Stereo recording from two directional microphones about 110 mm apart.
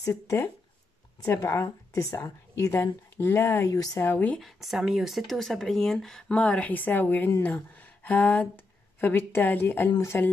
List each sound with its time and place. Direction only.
0.0 s speech: 30° left (ahead or behind)
4.0 s a woman's voice: 15° left (ahead or behind)
4.4 s a woman's voice: centre (ahead or behind); by 10.3 s 20° left (ahead or behind)